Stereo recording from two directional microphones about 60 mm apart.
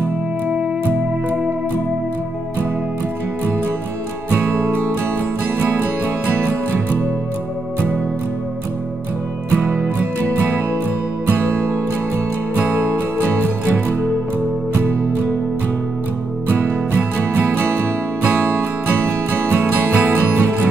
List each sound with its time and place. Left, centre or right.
4.3 s music: right
9.6 s music: right
11.2 s music: right
12.8 s music: right
16.4 s music: right
19.9 s music: right